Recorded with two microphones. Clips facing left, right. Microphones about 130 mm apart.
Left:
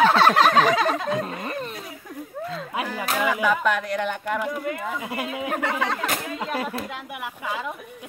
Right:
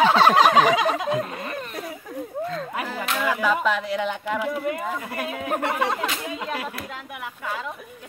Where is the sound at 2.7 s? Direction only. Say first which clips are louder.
Left 5 dB; 10° left (ahead or behind).